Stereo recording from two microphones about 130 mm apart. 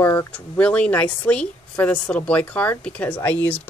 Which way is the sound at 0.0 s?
20° left (ahead or behind).